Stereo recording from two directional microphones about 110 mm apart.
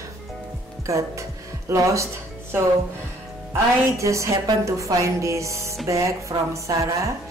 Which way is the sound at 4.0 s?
30° right (ahead or behind).